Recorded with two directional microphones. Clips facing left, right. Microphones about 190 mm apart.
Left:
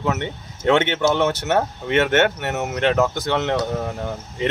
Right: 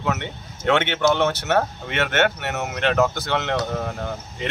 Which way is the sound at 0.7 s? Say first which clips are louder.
Left 1 dB; 15° left (ahead or behind).